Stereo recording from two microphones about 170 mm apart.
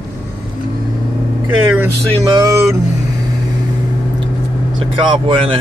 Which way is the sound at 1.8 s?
20° right (ahead or behind).